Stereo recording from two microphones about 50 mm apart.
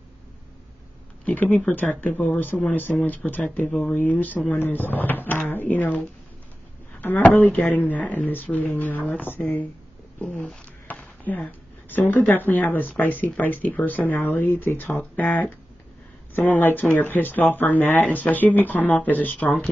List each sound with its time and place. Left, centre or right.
1.2 s speech: left
7.0 s speech: left
10.9 s a sound: left
11.3 s speech: left